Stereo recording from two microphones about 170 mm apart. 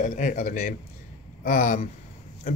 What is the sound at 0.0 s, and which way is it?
Speech, 50° left (ahead or behind).